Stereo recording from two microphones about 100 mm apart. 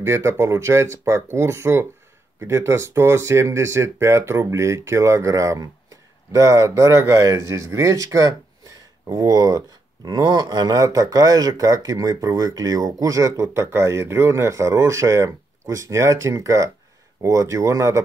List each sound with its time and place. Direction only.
0.0 s speech: 25° right (ahead or behind)